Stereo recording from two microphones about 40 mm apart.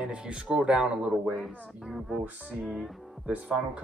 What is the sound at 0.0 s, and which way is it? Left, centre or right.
Speech, right.